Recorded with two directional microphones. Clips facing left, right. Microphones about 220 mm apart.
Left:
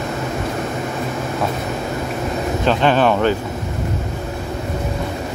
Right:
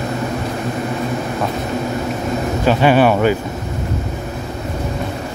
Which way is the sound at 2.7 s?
10° right (ahead or behind).